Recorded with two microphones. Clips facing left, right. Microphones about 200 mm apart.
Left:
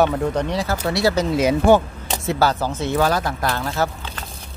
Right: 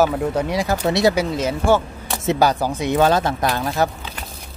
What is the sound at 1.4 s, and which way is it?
Speech, 15° left (ahead or behind).